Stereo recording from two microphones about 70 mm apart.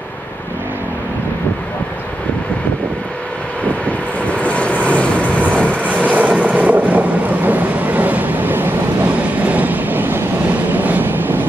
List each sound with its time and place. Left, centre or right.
4.3 s vehicle: centre
6.0 s vehicle: right